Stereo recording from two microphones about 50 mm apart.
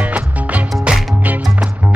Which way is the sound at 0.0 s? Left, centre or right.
Right.